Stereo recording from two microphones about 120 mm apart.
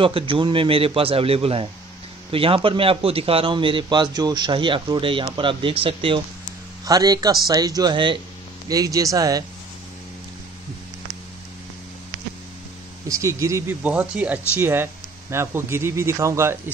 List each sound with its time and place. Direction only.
0.0 s a man's voice: 50° right (ahead or behind)
6.8 s a man's voice: 30° right (ahead or behind)
8.6 s speech: 30° right (ahead or behind)
13.1 s speech: 25° right (ahead or behind)
13.8 s speech: 10° right (ahead or behind)